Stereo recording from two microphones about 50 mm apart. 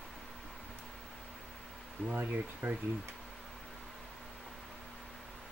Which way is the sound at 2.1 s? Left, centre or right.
Right.